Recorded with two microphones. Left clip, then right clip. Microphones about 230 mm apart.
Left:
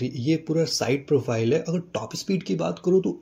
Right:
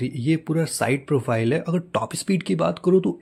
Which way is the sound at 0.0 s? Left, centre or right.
Right.